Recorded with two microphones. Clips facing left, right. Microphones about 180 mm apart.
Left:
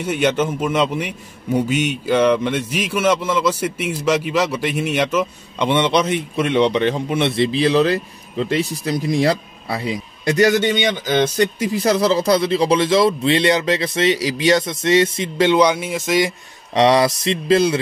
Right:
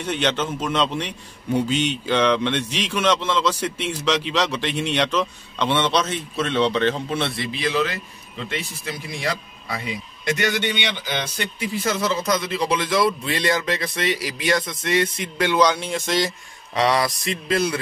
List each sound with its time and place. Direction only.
0.0 s a man's voice: 10° left (ahead or behind)
7.3 s speech: 30° left (ahead or behind)
15.6 s a man's voice: 10° left (ahead or behind)
16.7 s speech: 30° left (ahead or behind)